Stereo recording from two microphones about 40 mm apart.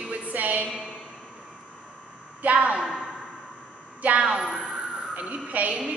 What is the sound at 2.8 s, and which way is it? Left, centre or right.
Speech, centre.